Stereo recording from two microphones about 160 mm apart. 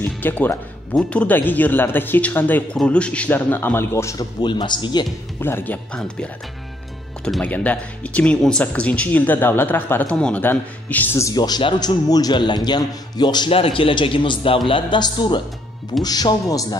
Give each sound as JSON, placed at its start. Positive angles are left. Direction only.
{"t": 0.0, "sound": "speech", "side_deg": 10}
{"t": 5.4, "sound": "a man's voice", "side_deg": 15}